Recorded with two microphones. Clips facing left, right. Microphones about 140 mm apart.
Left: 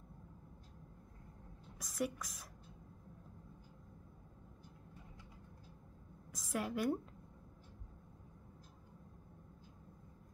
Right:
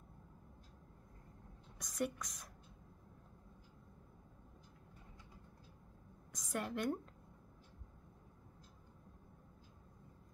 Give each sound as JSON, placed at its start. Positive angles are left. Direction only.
{"t": 1.8, "sound": "a woman's voice", "side_deg": 0}
{"t": 6.3, "sound": "a woman's voice", "side_deg": 0}